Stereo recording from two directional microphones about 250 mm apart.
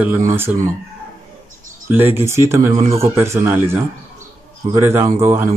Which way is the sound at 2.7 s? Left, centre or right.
Right.